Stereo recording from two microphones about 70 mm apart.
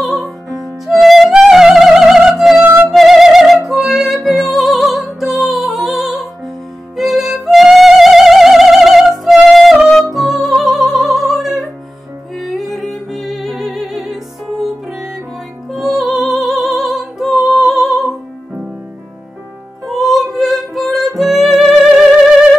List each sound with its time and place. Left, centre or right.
0.0 s music: centre
2.6 s music: right
2.9 s music: centre
15.7 s music: centre
19.9 s music: centre